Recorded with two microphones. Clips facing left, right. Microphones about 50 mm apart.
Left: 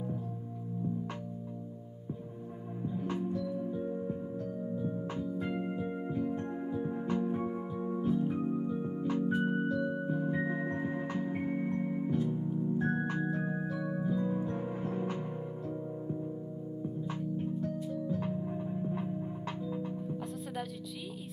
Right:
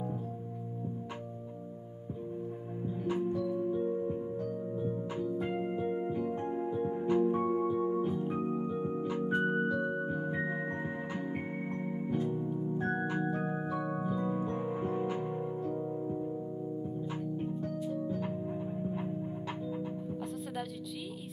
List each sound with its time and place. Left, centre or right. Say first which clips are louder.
3.1 s organ: right 5 dB; right
3.9 s music: right 3 dB; centre
7.1 s organ: right 7 dB; centre
9.8 s music: even; right
12.4 s organ: left 1 dB; centre
13.5 s music: right 1 dB; right
17.1 s music: even; centre
17.8 s organ: even; right